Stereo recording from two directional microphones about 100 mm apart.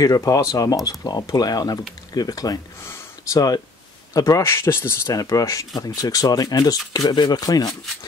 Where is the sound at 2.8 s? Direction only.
25° left (ahead or behind).